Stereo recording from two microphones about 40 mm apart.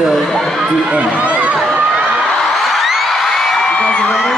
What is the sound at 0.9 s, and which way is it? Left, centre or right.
Speech, right.